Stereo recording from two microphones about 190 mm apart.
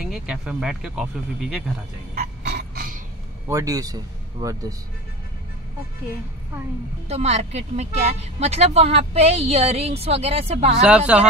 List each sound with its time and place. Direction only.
0.0 s speech: 5° right (ahead or behind)
2.1 s a sound: 50° right (ahead or behind)
3.4 s a man's voice: 15° right (ahead or behind)
7.1 s speech: 35° right (ahead or behind)
10.8 s speech: 5° right (ahead or behind)